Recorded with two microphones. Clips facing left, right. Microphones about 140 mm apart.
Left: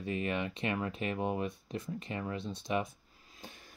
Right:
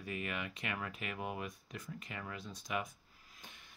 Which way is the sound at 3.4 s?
35° left (ahead or behind).